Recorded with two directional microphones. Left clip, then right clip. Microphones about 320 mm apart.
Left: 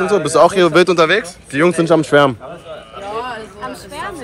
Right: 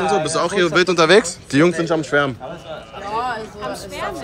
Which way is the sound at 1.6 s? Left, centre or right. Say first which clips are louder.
Left 6 dB; centre.